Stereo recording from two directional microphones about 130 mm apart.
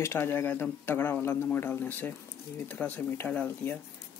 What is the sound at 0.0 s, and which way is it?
Speech, 20° left (ahead or behind).